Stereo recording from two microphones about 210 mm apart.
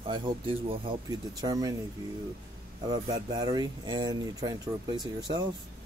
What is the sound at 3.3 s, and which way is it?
Speech, 20° right (ahead or behind).